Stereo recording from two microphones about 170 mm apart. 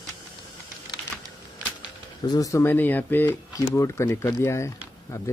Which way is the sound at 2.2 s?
20° left (ahead or behind).